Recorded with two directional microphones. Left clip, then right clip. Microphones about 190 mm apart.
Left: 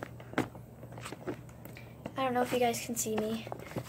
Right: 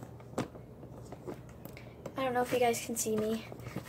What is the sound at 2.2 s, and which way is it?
A woman's voice, 5° left (ahead or behind).